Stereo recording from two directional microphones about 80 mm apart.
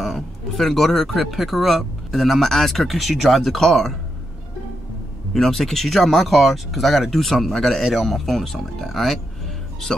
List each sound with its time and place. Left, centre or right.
0.0 s speech: centre
5.3 s speech: centre